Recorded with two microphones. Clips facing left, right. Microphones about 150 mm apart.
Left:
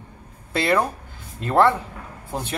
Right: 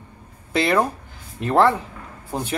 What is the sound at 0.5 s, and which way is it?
Speech, 20° right (ahead or behind).